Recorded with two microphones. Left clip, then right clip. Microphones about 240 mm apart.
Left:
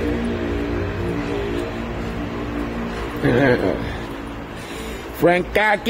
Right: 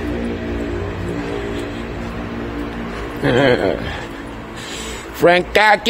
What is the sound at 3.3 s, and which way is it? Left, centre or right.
Speech, right.